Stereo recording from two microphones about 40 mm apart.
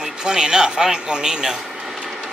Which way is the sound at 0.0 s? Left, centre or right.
Centre.